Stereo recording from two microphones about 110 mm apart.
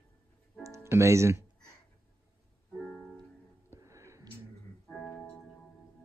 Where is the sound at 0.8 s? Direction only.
25° right (ahead or behind).